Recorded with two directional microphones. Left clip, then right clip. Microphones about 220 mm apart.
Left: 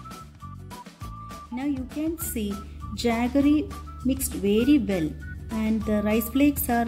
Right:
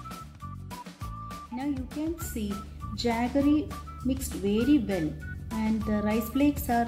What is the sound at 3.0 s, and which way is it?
Speech, 30° left (ahead or behind).